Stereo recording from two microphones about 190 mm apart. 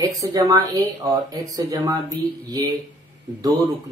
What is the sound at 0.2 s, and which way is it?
Speech, 20° right (ahead or behind).